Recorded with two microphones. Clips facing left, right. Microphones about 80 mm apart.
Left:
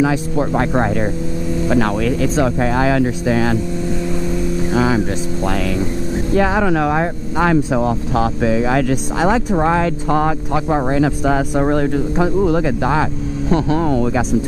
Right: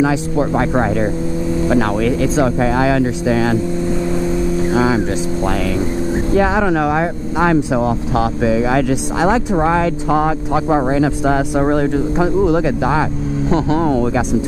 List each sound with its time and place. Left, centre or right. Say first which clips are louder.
0.4 s speech: right 1 dB; centre
2.3 s speech: right 2 dB; centre
4.7 s speech: even; right
6.3 s speech: even; centre
13.5 s speech: right 1 dB; right